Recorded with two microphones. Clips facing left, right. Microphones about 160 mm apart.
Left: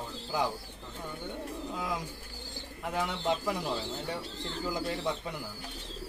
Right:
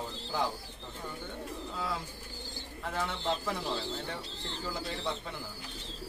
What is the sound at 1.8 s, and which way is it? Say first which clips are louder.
Speech: right 1 dB; 15° left (ahead or behind).